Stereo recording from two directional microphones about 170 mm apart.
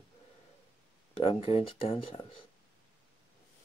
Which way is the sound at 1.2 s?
35° left (ahead or behind).